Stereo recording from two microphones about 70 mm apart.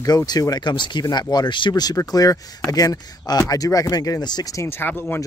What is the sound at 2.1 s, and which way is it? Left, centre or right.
Speech, left.